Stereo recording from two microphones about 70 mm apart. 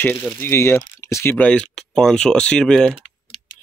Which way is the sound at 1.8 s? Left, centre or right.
Centre.